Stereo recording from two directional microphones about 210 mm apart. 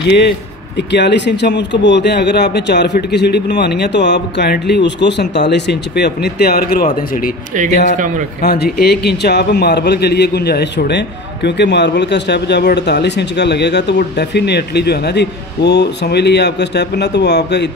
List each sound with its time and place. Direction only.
0.7 s a man's voice: 55° left (ahead or behind)
8.4 s a man's voice: 50° left (ahead or behind)